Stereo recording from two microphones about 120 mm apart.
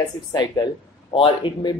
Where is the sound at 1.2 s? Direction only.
40° left (ahead or behind).